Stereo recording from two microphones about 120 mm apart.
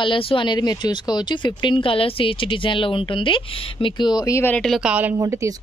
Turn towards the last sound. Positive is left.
turn(degrees=-25)  # may be behind; listen again after turning